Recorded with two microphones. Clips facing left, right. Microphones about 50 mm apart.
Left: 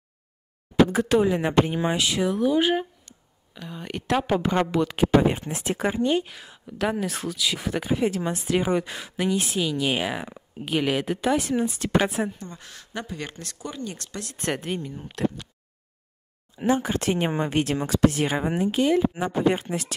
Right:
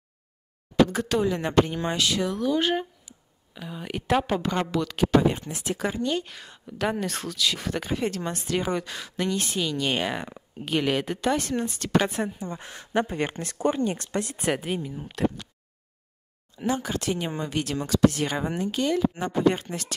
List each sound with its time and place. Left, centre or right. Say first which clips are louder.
0.7 s speech: left 3 dB; centre
3.1 s speech: even; centre
4.3 s speech: left 3 dB; centre
6.2 s a woman's voice: even; centre
12.4 s speech: right 5 dB; right
14.5 s a woman's voice: even; centre
16.5 s speech: left 4 dB; left